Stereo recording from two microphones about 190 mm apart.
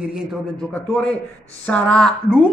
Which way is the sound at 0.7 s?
5° left (ahead or behind).